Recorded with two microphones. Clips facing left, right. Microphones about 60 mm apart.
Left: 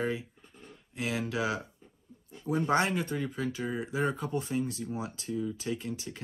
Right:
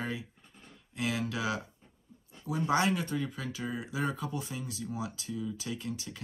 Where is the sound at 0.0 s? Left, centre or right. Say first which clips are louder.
Left 5 dB; left.